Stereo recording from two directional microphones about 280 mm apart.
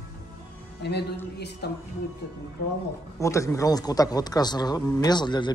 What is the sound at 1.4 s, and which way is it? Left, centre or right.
Music, left.